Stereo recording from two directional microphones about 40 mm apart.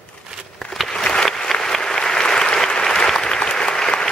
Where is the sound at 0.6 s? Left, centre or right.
Left.